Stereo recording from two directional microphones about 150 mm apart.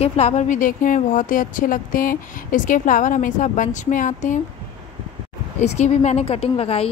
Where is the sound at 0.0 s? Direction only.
45° left (ahead or behind).